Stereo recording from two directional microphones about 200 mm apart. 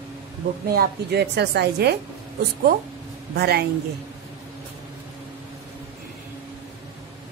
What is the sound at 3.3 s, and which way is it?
Speech, 50° right (ahead or behind).